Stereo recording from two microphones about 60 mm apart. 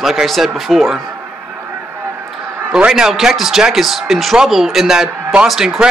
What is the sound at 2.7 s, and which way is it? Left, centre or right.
A man's voice, centre.